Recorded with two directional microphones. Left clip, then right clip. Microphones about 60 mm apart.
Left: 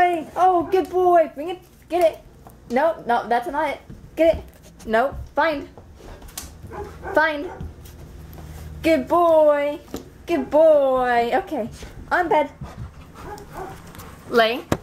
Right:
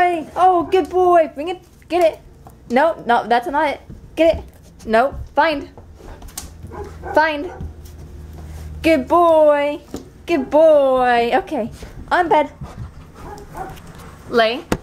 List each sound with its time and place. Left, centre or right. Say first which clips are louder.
0.0 s a sound: right 3 dB; centre
1.3 s a woman's voice: right 4 dB; right
4.1 s a sound: right 3 dB; centre
4.8 s a woman's voice: right 4 dB; centre
7.2 s a woman's voice: right 3 dB; centre
9.0 s a woman's voice: right 3 dB; centre
14.3 s speech: right 2 dB; centre